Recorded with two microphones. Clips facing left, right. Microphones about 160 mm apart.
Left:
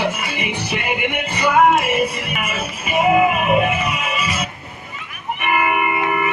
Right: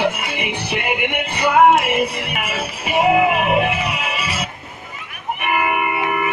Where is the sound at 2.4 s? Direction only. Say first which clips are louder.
Even; 70° right (ahead or behind).